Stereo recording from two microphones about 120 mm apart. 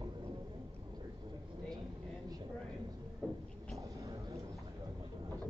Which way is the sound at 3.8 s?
25° right (ahead or behind).